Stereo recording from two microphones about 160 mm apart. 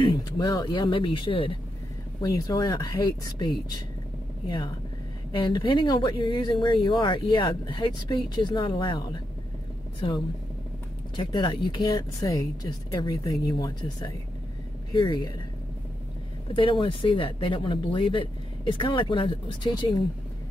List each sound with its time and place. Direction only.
0.0 s speech: 25° left (ahead or behind)
2.2 s speech: 20° left (ahead or behind)
4.5 s speech: 25° left (ahead or behind)
11.1 s speech: 30° left (ahead or behind)
16.5 s speech: 30° left (ahead or behind)